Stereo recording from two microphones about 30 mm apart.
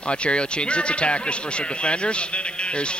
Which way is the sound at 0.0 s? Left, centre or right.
Left.